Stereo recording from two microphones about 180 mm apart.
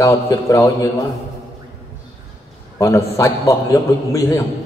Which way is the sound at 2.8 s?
15° left (ahead or behind).